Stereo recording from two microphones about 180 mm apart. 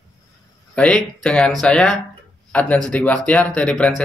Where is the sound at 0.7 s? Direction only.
5° left (ahead or behind).